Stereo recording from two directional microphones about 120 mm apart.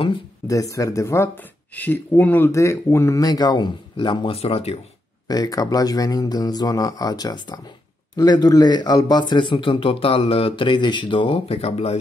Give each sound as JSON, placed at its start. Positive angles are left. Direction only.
{"t": 0.5, "sound": "speech", "side_deg": 25}
{"t": 4.4, "sound": "speech", "side_deg": 55}
{"t": 5.3, "sound": "speech", "side_deg": 35}